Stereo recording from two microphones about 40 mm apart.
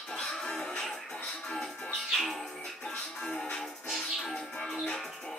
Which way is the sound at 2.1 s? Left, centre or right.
Centre.